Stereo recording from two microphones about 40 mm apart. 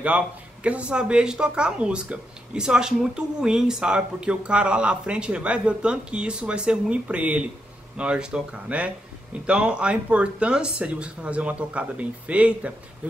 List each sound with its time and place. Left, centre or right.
0.7 s speech: right
8.0 s speech: right